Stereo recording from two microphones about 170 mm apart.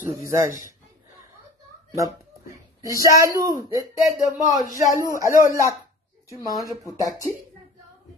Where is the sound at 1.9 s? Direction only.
20° right (ahead or behind).